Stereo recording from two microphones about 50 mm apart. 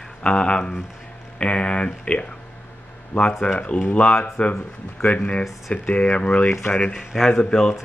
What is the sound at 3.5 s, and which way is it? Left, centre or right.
Speech, left.